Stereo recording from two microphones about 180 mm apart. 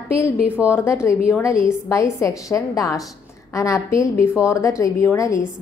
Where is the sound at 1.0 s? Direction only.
15° left (ahead or behind).